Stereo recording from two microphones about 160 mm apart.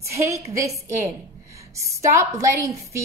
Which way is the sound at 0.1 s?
20° right (ahead or behind).